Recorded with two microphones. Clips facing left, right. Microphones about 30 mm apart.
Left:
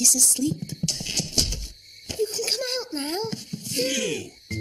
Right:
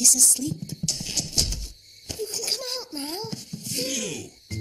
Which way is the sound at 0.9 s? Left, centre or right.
Left.